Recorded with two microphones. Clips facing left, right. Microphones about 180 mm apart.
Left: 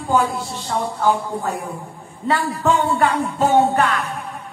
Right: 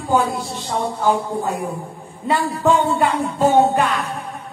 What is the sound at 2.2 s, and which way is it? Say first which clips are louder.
Speech: right 1 dB; 15° right (ahead or behind).